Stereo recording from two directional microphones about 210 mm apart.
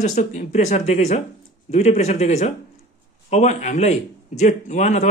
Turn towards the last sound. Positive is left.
turn(degrees=35)  # may be behind; listen again after turning